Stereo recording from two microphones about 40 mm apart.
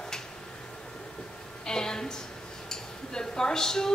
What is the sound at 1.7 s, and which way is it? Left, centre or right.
A woman's voice, centre.